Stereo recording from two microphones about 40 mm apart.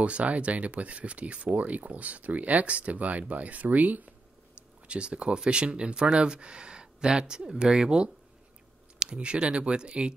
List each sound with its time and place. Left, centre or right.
0.0 s speech: right
4.8 s speech: right